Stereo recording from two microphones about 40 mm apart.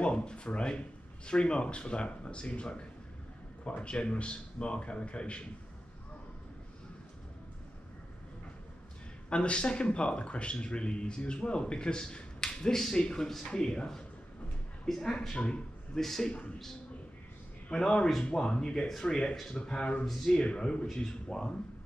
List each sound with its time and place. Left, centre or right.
0.0 s speech: left
9.3 s a man's voice: left
16.0 s speech: centre
17.6 s speech: left